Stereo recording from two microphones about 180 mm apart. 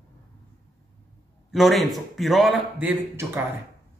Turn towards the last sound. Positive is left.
turn(degrees=-10)  # may be behind; listen again after turning